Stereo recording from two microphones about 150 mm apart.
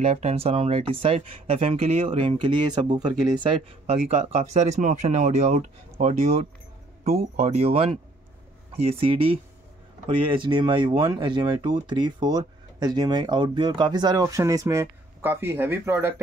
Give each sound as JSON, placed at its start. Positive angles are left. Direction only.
{"t": 0.0, "sound": "speech", "side_deg": -45}
{"t": 3.8, "sound": "speech", "side_deg": -50}
{"t": 10.4, "sound": "speech", "side_deg": -30}